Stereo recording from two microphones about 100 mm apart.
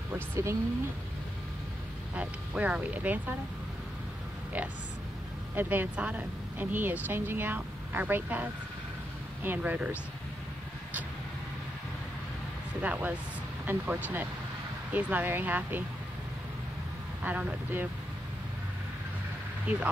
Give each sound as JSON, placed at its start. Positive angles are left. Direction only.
{"t": 0.1, "sound": "speech", "side_deg": -30}
{"t": 2.1, "sound": "speech", "side_deg": -10}
{"t": 5.5, "sound": "speech", "side_deg": -20}
{"t": 12.8, "sound": "speech", "side_deg": -15}
{"t": 17.2, "sound": "speech", "side_deg": -15}
{"t": 19.6, "sound": "speech", "side_deg": -15}